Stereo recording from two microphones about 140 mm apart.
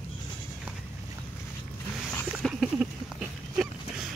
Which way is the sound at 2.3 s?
5° right (ahead or behind).